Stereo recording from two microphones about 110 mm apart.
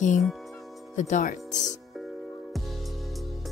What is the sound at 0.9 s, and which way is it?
Speech, 90° left.